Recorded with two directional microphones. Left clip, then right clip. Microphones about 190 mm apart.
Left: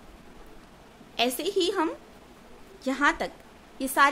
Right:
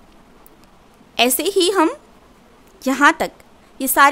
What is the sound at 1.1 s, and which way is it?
A woman's voice, 40° right (ahead or behind).